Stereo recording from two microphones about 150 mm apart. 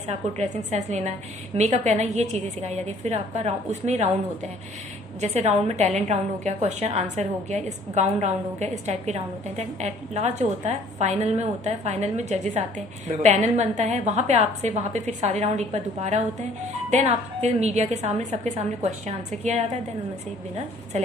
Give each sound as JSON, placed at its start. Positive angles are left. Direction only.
{"t": 0.1, "sound": "a woman's voice", "side_deg": -45}
{"t": 5.2, "sound": "a woman's voice", "side_deg": -50}